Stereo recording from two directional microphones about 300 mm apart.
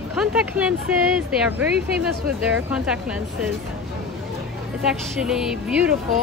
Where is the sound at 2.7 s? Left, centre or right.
Centre.